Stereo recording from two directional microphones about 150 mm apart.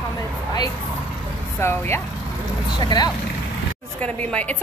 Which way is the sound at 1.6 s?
15° left (ahead or behind).